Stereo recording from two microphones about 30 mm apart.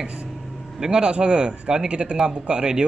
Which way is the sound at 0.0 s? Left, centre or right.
Right.